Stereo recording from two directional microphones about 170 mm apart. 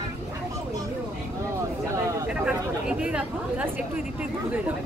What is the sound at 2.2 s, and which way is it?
Chatter, 5° right (ahead or behind).